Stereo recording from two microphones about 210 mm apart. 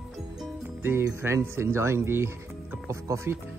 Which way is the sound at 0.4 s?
10° right (ahead or behind).